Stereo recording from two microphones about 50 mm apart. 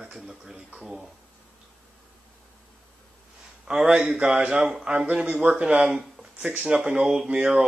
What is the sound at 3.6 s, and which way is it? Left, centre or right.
A man's voice, centre.